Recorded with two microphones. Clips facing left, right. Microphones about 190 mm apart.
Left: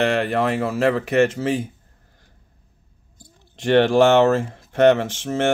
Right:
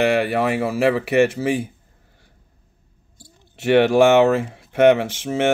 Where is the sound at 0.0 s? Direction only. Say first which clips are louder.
Right 1 dB; 10° right (ahead or behind).